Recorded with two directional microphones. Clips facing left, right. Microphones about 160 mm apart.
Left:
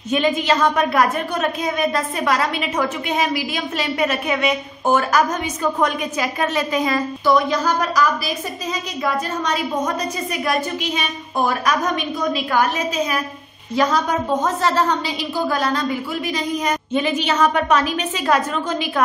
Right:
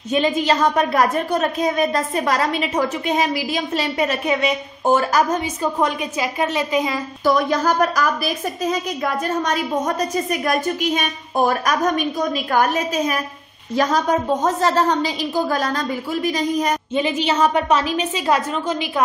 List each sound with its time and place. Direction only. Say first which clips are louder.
0.1 s a woman's voice: even; 35° right (ahead or behind); by 7.0 s 20° right (ahead or behind)
7.2 s a woman's voice: right 1 dB; 45° right (ahead or behind)
16.9 s a woman's voice: left 1 dB; 25° right (ahead or behind)